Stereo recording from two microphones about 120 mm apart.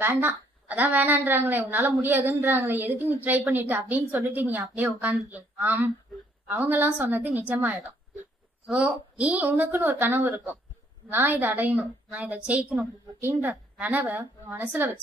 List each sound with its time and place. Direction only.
0.0 s a woman's voice: 15° right (ahead or behind)